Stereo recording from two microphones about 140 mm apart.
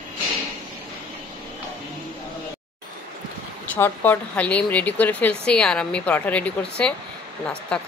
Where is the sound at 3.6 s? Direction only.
10° left (ahead or behind).